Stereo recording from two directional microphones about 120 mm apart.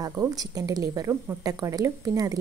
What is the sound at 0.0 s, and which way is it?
A woman's voice, 25° right (ahead or behind).